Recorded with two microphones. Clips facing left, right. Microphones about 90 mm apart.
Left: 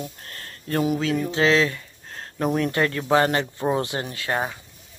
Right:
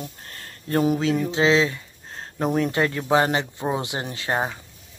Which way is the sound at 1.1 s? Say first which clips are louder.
Left 2 dB; 20° right (ahead or behind).